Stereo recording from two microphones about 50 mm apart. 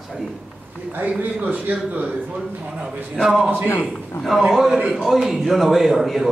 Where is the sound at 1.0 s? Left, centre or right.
Right.